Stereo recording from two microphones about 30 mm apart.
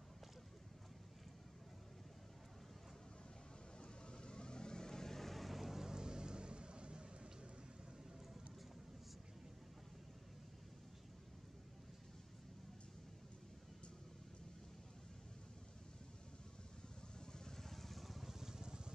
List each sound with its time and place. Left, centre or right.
3.8 s vehicle: left; by 5.8 s centre
5.8 s vehicle: right
17.6 s vehicle: centre
18.4 s vehicle: centre